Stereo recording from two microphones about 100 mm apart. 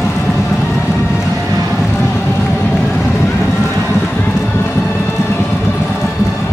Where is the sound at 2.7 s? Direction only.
Centre (ahead or behind).